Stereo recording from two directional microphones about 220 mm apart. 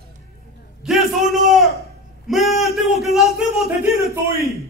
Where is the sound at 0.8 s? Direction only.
Centre (ahead or behind).